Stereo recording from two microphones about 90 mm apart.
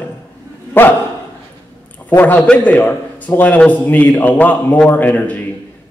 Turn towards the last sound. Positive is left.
turn(degrees=20)  # may be behind; listen again after turning